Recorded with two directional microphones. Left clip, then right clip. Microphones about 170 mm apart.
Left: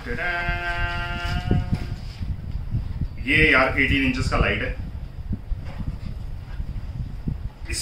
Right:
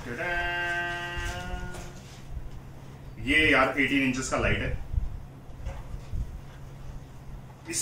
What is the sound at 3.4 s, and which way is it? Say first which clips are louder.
A man's voice: left 5 dB; centre (ahead or behind).